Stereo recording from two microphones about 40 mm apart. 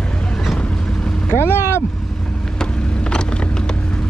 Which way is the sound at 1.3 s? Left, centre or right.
Left.